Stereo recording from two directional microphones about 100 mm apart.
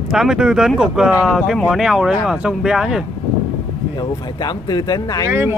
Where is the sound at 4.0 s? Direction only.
45° left (ahead or behind).